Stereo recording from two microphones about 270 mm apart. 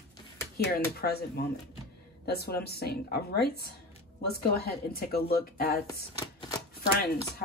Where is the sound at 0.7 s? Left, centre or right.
Left.